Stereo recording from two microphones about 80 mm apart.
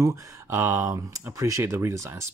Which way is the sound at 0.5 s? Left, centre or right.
Right.